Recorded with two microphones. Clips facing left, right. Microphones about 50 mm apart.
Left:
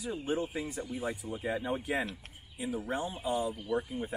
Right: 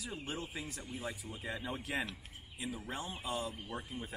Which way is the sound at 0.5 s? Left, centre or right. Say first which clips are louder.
Left 7 dB; centre.